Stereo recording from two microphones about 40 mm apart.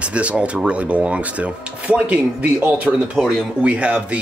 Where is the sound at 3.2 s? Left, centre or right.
Centre.